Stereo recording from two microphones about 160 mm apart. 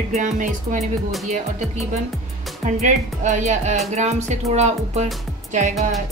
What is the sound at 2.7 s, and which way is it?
Speech, 50° right (ahead or behind).